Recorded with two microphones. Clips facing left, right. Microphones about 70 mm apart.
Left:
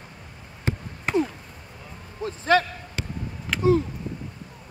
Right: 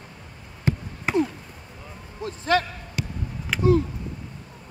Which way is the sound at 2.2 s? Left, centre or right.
Left.